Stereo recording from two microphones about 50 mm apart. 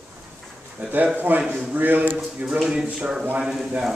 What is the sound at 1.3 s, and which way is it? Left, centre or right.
Speech, right.